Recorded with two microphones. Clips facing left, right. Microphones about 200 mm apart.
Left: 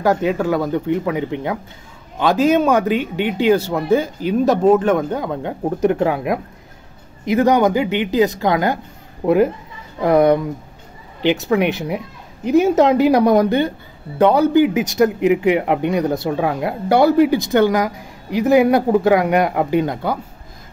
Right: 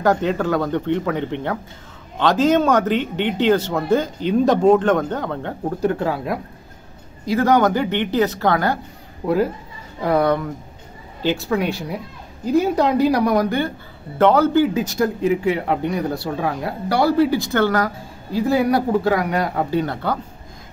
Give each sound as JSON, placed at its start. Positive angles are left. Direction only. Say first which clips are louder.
{"t": 0.0, "sound": "speech", "louder": "left 1 dB", "side_deg": 10}